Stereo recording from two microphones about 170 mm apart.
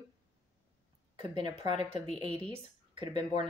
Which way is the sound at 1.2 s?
25° right (ahead or behind).